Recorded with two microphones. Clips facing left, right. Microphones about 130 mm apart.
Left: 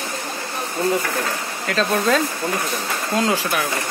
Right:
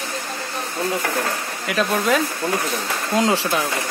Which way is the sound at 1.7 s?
10° right (ahead or behind).